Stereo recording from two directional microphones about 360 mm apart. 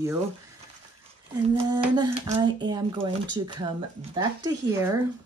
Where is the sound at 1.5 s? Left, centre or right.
Centre.